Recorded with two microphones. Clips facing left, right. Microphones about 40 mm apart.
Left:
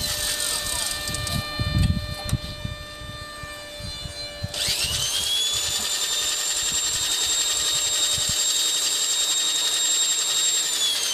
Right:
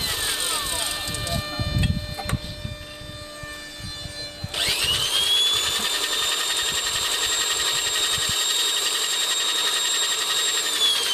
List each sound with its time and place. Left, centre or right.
0.0 s vehicle: right
1.3 s a sound: centre
1.8 s printer: right
4.6 s tools: right